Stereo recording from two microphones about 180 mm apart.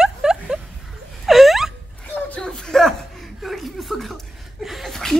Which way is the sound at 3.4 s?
Centre (ahead or behind).